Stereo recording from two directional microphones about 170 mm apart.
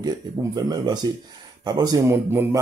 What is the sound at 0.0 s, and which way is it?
Speech, 20° right (ahead or behind).